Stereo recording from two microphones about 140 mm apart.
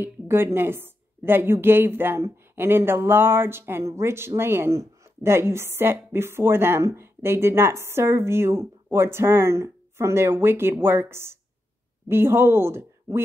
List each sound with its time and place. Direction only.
0.0 s a woman's voice: 15° right (ahead or behind)